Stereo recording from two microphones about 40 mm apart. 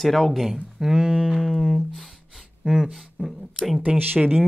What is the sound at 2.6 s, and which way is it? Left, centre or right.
Speech, centre.